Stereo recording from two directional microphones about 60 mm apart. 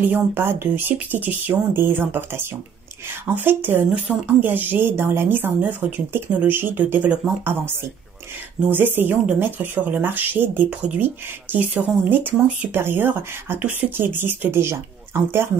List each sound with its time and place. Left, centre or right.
0.0 s a woman's voice: right